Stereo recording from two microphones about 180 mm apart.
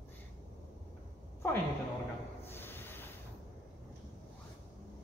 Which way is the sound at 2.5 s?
10° left (ahead or behind).